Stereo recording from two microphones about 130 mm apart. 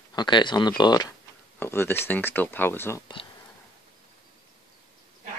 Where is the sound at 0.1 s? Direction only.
35° left (ahead or behind).